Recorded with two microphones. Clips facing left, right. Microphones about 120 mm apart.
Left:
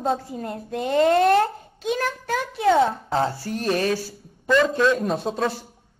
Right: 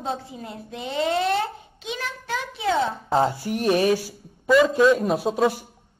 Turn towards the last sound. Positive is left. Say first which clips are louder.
# right 3 dB
turn(degrees=-10)  # may be behind; listen again after turning